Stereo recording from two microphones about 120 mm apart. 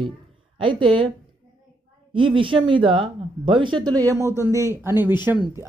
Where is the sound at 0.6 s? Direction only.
40° right (ahead or behind).